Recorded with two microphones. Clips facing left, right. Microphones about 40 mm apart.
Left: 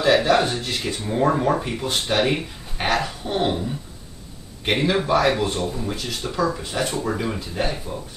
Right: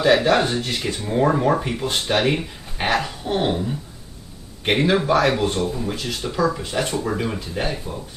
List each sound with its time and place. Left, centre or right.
0.0 s speech: centre
0.8 s speech: centre